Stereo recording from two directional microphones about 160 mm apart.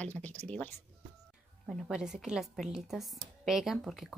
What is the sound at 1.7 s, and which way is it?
Speech, 5° right (ahead or behind).